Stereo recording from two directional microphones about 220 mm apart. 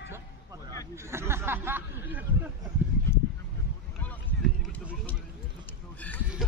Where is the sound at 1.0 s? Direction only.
10° right (ahead or behind).